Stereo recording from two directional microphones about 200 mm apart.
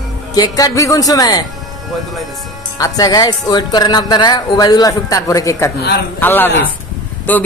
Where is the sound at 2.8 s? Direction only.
20° left (ahead or behind).